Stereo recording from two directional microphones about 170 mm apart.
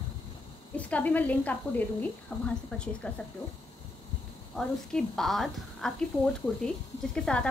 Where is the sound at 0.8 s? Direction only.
10° left (ahead or behind).